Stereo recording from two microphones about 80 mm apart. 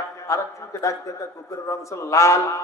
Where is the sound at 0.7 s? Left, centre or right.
Left.